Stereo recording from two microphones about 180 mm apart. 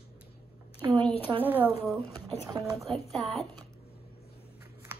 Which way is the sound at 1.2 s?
10° left (ahead or behind).